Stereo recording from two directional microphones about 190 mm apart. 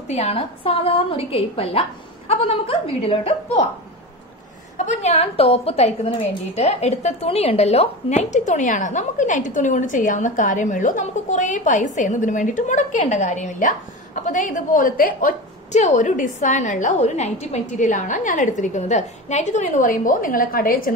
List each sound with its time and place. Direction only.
0.1 s a woman's voice: 30° left (ahead or behind)
4.7 s a woman's voice: 35° left (ahead or behind)